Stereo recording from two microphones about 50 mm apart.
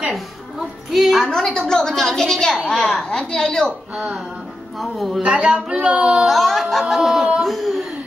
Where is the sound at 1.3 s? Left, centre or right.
Centre.